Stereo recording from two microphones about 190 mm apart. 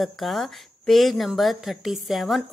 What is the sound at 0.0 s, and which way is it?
A woman's voice, centre (ahead or behind).